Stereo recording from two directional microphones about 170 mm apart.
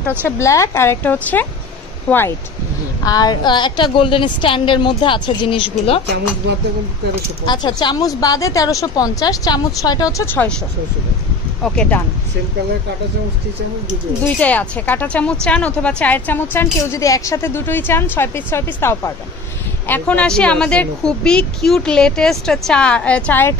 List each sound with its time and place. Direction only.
0.4 s a woman's voice: 20° left (ahead or behind)
3.1 s a woman's voice: 25° left (ahead or behind)
7.4 s a woman's voice: 25° left (ahead or behind)
11.6 s a woman's voice: 5° left (ahead or behind)
14.2 s a woman's voice: 10° left (ahead or behind)